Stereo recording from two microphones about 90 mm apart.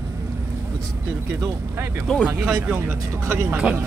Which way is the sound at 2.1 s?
5° left (ahead or behind).